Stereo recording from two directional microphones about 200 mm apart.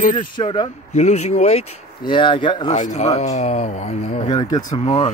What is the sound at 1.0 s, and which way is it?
Speech, 35° left (ahead or behind).